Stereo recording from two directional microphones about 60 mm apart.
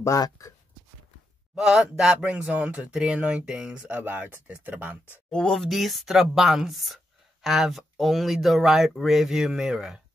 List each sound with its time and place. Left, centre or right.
0.0 s speech: left
1.5 s speech: centre
2.2 s speech: right
3.9 s speech: right
5.3 s speech: centre